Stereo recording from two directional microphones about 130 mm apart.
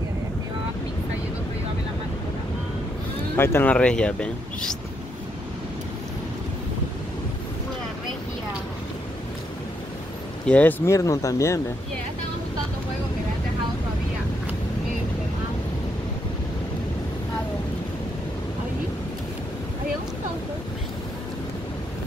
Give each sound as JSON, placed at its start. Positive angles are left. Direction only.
{"t": 3.3, "sound": "speech", "side_deg": 20}
{"t": 3.7, "sound": "speech", "side_deg": 5}
{"t": 10.4, "sound": "speech", "side_deg": 10}
{"t": 10.9, "sound": "speech", "side_deg": 25}